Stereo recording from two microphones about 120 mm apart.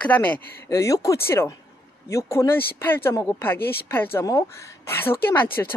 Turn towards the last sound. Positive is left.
turn(degrees=20)  # may be behind; listen again after turning